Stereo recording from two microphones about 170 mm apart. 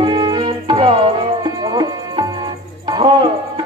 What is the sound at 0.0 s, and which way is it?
Music, 30° right (ahead or behind).